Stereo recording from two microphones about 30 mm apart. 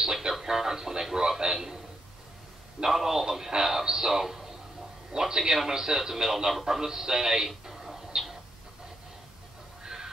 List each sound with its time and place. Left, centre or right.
0.0 s speech: centre
2.8 s a man's voice: centre